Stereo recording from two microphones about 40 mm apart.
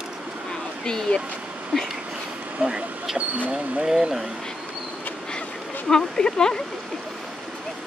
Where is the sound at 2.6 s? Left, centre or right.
Right.